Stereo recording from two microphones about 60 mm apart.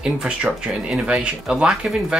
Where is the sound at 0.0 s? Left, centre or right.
Centre.